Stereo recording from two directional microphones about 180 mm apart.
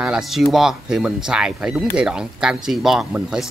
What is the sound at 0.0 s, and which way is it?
Speech, 5° right (ahead or behind).